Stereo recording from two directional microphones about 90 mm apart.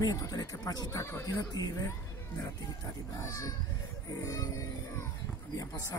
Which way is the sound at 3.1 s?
40° left (ahead or behind).